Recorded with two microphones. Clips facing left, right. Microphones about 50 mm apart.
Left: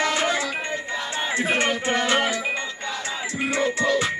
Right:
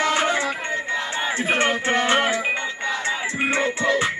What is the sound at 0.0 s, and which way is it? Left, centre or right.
Music, right.